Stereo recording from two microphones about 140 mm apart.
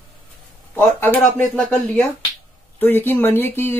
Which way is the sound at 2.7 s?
15° left (ahead or behind).